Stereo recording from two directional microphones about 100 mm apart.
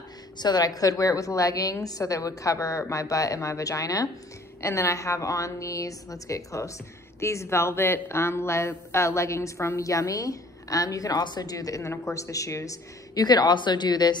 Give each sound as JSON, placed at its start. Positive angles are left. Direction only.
{"t": 0.4, "sound": "speech", "side_deg": 45}